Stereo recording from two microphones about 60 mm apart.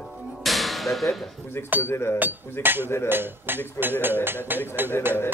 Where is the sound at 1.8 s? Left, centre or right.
Left.